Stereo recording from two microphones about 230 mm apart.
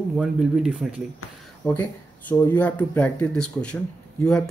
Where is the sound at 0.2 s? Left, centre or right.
Centre.